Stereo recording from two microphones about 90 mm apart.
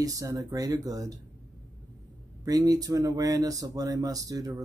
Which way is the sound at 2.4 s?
45° right (ahead or behind).